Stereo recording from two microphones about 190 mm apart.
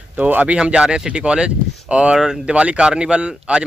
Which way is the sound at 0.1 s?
5° right (ahead or behind).